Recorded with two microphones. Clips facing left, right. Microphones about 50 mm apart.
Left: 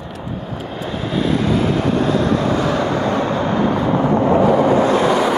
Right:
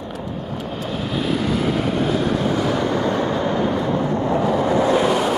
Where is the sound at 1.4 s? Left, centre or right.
Left.